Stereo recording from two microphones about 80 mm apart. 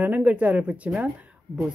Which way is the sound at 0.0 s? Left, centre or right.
Centre.